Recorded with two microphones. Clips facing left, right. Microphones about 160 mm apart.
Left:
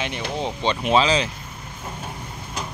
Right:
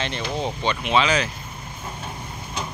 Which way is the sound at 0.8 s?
35° left (ahead or behind).